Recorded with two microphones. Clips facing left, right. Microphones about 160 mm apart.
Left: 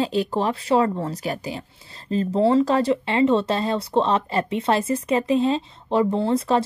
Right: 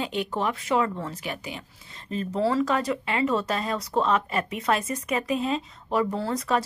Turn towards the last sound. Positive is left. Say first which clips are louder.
# left 6 dB
turn(degrees=30)  # may be behind; listen again after turning